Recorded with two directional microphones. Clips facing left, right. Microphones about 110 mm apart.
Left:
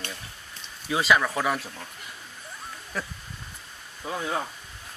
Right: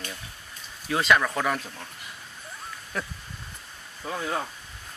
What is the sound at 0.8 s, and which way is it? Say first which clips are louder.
Speech: even; 5° left (ahead or behind).